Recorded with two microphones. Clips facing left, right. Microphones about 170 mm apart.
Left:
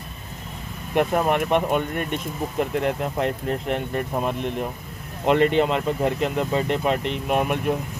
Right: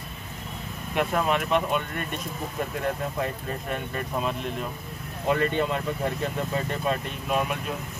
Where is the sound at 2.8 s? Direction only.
80° left; by 4.6 s 60° left (ahead or behind).